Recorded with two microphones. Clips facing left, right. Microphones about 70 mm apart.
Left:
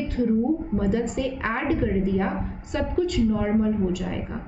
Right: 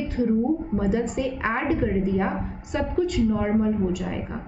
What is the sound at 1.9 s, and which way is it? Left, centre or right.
A woman's voice, centre.